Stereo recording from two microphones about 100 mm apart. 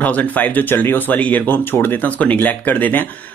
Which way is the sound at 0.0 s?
15° left (ahead or behind).